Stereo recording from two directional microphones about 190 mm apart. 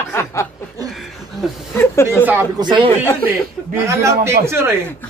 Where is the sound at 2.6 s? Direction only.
25° right (ahead or behind).